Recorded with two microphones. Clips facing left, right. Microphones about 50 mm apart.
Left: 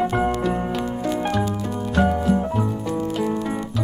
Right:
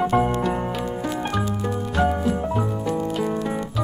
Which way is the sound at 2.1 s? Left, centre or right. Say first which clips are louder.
Left 2 dB; centre.